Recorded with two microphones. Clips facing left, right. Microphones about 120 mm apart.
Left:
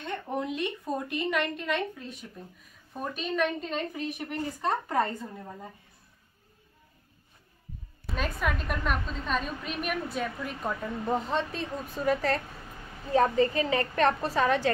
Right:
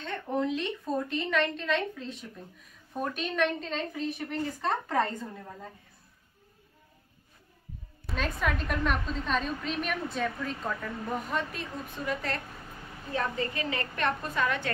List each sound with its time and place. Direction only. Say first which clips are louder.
0.0 s a woman's voice: right 2 dB; 15° left (ahead or behind)
8.1 s a woman's voice: even; 5° left (ahead or behind); by 12.0 s 30° left (ahead or behind)
12.0 s a woman's voice: left 7 dB; 40° left (ahead or behind)